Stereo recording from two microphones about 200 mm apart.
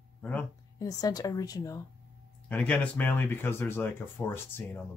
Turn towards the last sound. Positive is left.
turn(degrees=10)  # may be behind; listen again after turning